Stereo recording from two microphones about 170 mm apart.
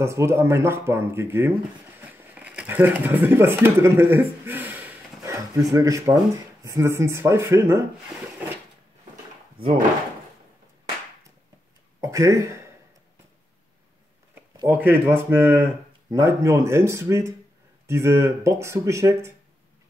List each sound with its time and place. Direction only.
0.0 s speech: 15° right (ahead or behind)
2.0 s a sound: 10° right (ahead or behind)
5.7 s speech: 20° right (ahead or behind)
12.0 s speech: 20° right (ahead or behind)
14.7 s speech: 10° right (ahead or behind)